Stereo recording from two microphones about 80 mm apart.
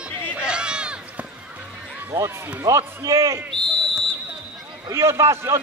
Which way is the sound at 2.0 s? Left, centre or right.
Right.